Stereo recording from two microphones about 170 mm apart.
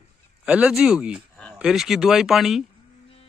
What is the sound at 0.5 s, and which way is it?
Speech, 5° right (ahead or behind).